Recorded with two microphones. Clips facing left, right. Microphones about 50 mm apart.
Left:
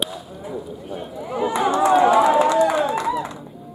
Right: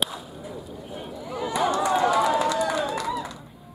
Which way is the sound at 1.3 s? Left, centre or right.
Left.